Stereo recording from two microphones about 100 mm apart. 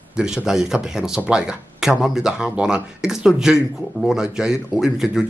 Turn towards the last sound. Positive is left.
turn(degrees=-5)  # may be behind; listen again after turning